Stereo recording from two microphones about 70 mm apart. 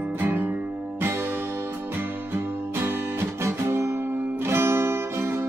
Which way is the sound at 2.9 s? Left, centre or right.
Right.